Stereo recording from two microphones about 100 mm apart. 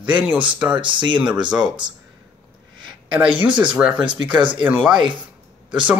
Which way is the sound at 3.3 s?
55° right (ahead or behind).